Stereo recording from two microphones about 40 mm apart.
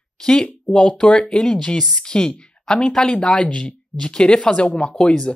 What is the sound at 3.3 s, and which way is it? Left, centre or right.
Speech, left.